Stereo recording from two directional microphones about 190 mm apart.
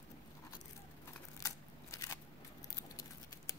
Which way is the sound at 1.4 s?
15° left (ahead or behind).